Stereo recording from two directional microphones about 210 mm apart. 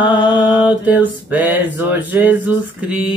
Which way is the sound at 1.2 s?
10° right (ahead or behind).